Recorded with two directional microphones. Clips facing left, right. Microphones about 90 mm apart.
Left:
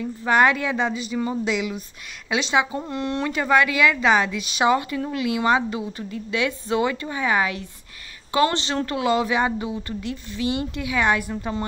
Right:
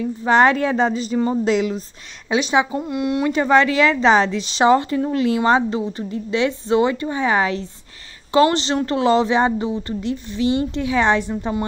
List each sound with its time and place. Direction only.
0.2 s a woman's voice: 30° right (ahead or behind)
2.2 s a woman's voice: 20° right (ahead or behind)
2.8 s speech: 10° right (ahead or behind)
3.3 s a woman's voice: 25° right (ahead or behind)